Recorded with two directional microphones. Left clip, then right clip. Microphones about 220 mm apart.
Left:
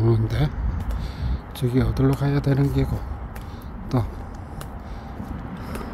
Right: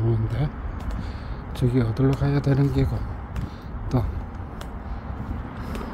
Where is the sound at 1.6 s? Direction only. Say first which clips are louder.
Left 1 dB; 5° left (ahead or behind).